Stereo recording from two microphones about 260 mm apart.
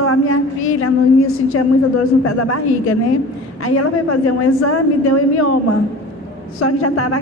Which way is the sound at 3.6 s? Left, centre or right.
Left.